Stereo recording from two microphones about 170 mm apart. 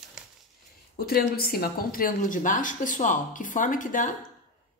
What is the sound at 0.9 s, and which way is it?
Speech, 60° left (ahead or behind).